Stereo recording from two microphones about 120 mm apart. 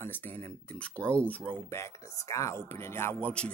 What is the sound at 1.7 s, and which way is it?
Speech, 25° left (ahead or behind).